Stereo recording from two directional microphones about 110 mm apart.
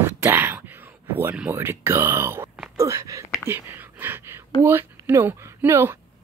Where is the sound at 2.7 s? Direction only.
30° right (ahead or behind).